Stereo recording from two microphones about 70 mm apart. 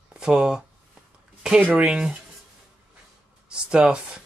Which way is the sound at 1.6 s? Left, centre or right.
Right.